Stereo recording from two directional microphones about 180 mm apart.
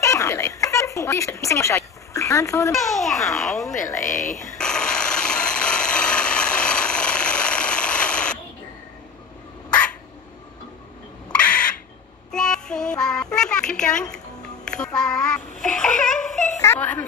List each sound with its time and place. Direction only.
0.0 s speech: 15° left (ahead or behind)
2.7 s a child's voice: centre (ahead or behind)
4.6 s rub: 5° left (ahead or behind)
11.3 s crow: 5° left (ahead or behind)
12.3 s music: 5° left (ahead or behind)
16.5 s a woman's voice: 15° left (ahead or behind)